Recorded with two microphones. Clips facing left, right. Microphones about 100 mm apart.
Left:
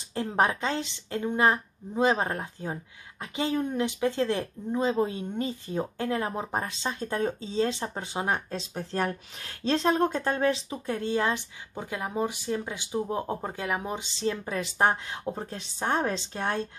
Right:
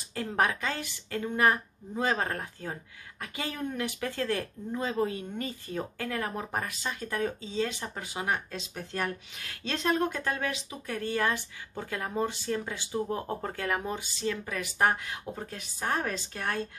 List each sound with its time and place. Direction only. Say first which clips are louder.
0.1 s a woman's voice: left 3 dB; 25° left (ahead or behind)